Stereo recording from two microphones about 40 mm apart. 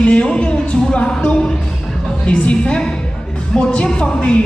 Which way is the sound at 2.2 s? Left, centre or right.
Left.